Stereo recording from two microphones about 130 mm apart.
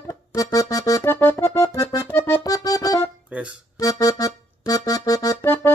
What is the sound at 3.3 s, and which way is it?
Music, 10° right (ahead or behind).